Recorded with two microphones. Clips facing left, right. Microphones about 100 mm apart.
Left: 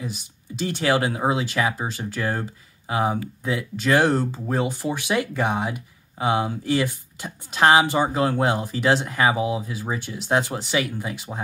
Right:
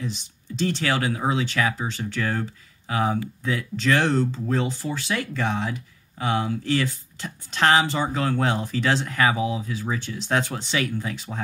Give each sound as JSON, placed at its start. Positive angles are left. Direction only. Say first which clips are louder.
{"t": 0.0, "sound": "speech", "louder": "right 1 dB", "side_deg": 10}
{"t": 1.0, "sound": "speech", "louder": "left 1 dB", "side_deg": 25}
{"t": 2.9, "sound": "speech", "louder": "left 1 dB", "side_deg": 20}
{"t": 9.9, "sound": "speech", "louder": "left 3 dB", "side_deg": 10}